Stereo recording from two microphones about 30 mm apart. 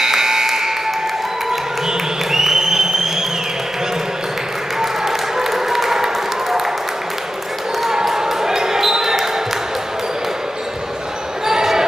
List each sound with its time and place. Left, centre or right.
0.0 s a sound: centre
1.9 s applause: centre
4.7 s applause: centre
7.9 s basketball bounce: centre
11.4 s basketball bounce: centre